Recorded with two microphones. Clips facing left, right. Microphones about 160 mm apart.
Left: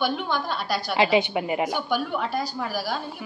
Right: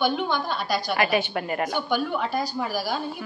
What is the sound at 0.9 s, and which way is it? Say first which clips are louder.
A woman's voice: left 5 dB; 20° left (ahead or behind).